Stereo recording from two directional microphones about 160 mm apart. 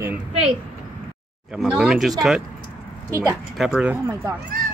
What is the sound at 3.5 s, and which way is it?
Speech, 5° right (ahead or behind).